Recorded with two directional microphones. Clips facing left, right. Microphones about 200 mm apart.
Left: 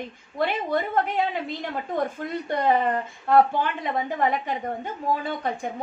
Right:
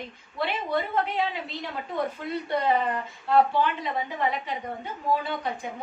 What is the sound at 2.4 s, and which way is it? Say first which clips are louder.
A woman's voice: left 3 dB; 50° left (ahead or behind).